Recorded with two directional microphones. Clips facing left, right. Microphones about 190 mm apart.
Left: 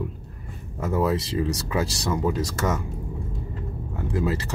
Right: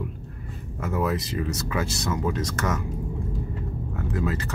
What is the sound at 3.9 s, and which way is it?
Speech, 30° left (ahead or behind).